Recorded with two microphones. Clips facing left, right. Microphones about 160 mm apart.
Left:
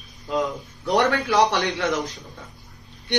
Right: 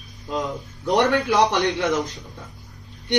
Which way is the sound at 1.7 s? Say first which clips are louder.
Right 2 dB; 20° right (ahead or behind).